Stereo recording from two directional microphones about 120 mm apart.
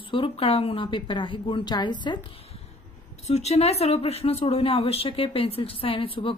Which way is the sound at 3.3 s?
65° left (ahead or behind).